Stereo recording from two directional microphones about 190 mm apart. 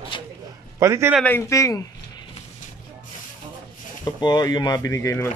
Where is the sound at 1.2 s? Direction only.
15° left (ahead or behind).